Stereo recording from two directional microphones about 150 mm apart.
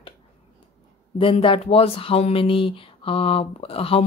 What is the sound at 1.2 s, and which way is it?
Speech, 35° left (ahead or behind).